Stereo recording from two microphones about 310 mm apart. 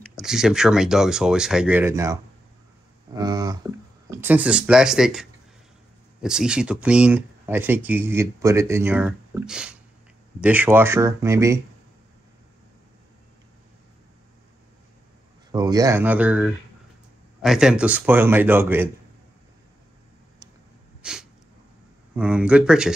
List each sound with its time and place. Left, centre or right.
0.0 s speech: centre
3.1 s a sound: centre
4.1 s speech: centre
6.2 s speech: centre
15.5 s speech: centre
21.0 s sneeze: centre
22.1 s speech: centre